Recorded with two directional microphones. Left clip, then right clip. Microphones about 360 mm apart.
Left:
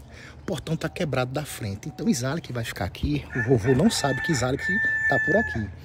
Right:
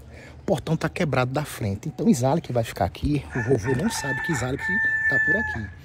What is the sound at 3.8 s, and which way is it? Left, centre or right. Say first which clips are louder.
Speech: left 3 dB; centre.